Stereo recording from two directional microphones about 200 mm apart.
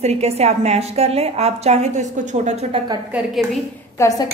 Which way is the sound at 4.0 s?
15° left (ahead or behind).